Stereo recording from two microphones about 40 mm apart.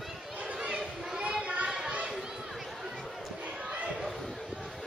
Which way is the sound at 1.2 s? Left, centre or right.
Right.